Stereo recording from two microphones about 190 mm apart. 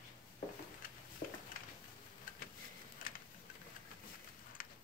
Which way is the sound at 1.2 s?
50° left (ahead or behind).